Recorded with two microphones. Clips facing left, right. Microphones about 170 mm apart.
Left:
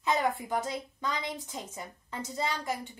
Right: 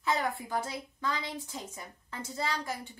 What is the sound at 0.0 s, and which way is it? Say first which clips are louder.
A woman's voice: left 3 dB; 20° left (ahead or behind).